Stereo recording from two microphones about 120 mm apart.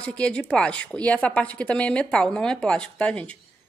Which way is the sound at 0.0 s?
10° left (ahead or behind).